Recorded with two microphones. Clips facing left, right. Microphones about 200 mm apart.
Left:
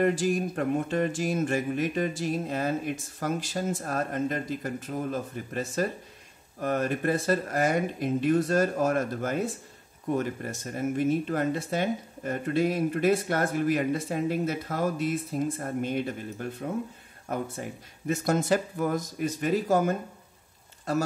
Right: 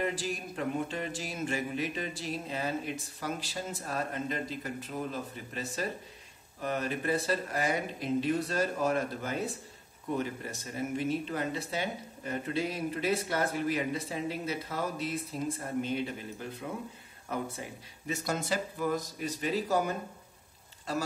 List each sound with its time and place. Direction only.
0.0 s speech: 45° left (ahead or behind)